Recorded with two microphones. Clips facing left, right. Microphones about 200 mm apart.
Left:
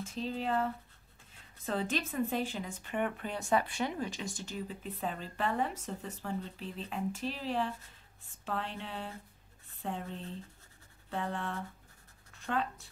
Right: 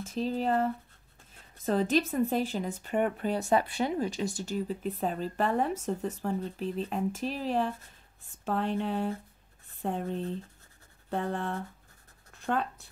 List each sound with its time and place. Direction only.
0.0 s speech: 40° right (ahead or behind)
1.7 s speech: 40° right (ahead or behind)